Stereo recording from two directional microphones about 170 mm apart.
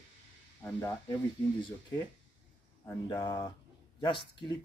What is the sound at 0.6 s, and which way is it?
Speech, 10° left (ahead or behind).